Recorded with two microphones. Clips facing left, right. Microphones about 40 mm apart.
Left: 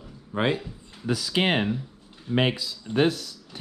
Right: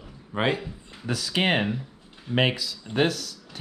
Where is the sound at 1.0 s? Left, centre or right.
Right.